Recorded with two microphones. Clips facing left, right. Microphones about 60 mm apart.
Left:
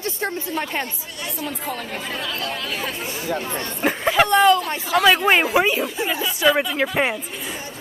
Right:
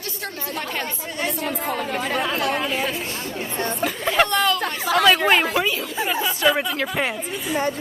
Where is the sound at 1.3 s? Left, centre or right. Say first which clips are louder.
Right 2 dB; right.